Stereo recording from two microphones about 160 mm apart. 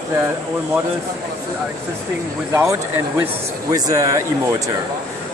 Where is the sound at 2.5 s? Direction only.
20° right (ahead or behind).